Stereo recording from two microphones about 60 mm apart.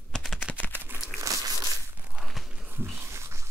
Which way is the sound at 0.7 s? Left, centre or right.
Right.